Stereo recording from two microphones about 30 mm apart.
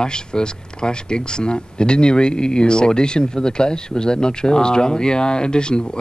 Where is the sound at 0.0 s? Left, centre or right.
Left.